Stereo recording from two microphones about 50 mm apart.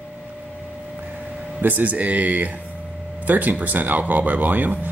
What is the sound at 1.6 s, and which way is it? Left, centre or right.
Speech, right.